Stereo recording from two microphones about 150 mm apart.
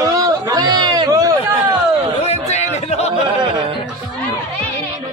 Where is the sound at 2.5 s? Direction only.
45° left (ahead or behind).